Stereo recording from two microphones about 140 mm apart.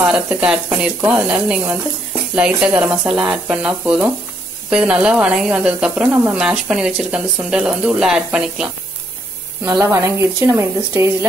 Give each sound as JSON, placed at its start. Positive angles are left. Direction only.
{"t": 0.0, "sound": "speech", "side_deg": -10}
{"t": 9.7, "sound": "a woman's voice", "side_deg": -20}